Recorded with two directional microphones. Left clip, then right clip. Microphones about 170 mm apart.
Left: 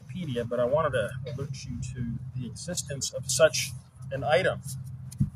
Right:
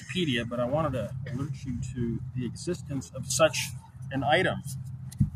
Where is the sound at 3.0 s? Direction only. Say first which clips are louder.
Left 2 dB; 5° left (ahead or behind).